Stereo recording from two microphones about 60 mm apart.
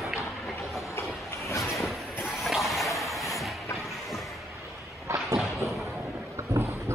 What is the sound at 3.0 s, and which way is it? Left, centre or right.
Vehicle, centre.